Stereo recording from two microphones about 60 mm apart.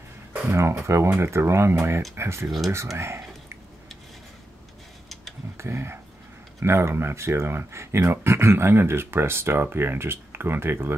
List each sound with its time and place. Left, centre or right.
0.5 s speech: right
5.6 s speech: right